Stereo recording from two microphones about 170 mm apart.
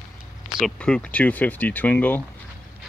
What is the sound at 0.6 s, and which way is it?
Speech, 5° left (ahead or behind).